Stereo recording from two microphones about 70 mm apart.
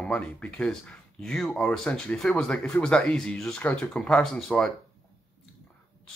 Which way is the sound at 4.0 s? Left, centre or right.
Centre.